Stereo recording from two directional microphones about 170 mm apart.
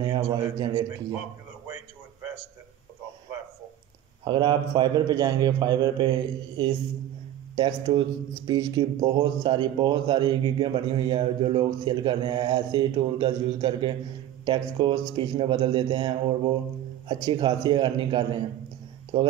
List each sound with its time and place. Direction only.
0.0 s a man's voice: 25° right (ahead or behind)
4.2 s a man's voice: 25° right (ahead or behind)